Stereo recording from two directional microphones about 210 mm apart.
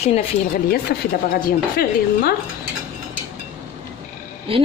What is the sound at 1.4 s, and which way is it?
Speech, 45° left (ahead or behind).